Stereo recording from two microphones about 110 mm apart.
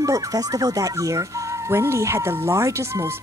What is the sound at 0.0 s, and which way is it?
Speech, 35° right (ahead or behind).